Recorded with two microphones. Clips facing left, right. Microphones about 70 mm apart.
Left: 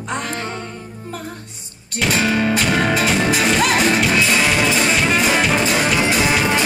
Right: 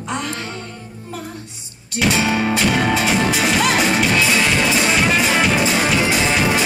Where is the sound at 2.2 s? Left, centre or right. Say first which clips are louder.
Left 1 dB; centre.